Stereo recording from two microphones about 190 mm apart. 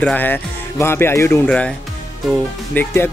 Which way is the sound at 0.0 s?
10° left (ahead or behind).